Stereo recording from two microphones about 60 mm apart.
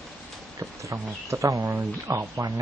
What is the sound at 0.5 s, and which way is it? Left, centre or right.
Speech, right.